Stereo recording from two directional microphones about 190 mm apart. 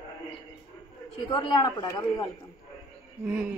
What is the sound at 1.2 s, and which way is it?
A man's voice, 25° left (ahead or behind).